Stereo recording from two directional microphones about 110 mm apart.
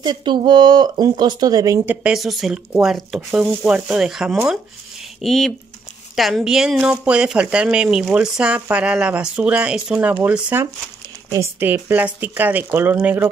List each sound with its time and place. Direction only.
0.0 s speech: 45° right (ahead or behind)
2.1 s speech: centre (ahead or behind)